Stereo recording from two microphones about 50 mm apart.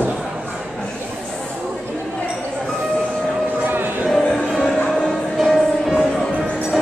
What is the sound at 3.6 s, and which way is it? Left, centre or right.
Music, right.